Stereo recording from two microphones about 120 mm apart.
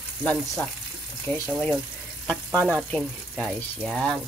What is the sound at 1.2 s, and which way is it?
Speech, 20° left (ahead or behind).